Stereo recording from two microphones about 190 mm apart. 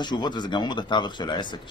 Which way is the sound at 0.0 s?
20° left (ahead or behind).